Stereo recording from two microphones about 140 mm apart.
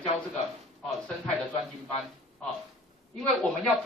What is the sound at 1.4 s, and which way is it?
Speech, centre (ahead or behind).